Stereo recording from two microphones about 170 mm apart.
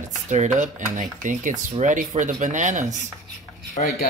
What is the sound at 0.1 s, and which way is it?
Speech, 45° right (ahead or behind).